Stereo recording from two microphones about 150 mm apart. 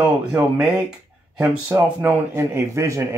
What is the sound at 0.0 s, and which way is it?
Speech, 10° right (ahead or behind).